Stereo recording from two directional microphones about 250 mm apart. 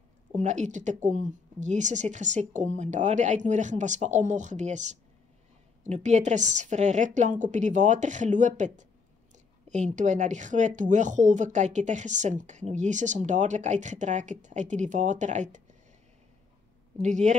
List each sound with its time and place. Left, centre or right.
0.4 s speech: right
17.0 s speech: right